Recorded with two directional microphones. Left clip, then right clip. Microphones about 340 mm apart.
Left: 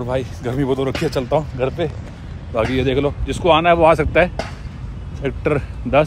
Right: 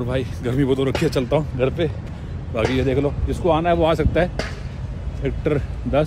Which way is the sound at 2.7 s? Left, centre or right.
Left.